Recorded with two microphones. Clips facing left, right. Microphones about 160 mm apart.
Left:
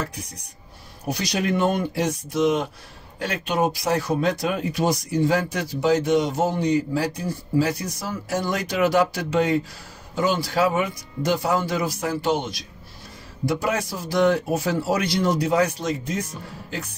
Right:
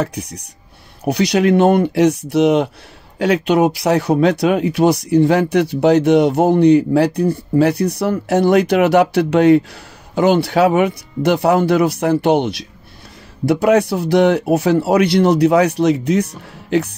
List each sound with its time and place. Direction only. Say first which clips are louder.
0.0 s speech: right 9 dB; 70° right (ahead or behind)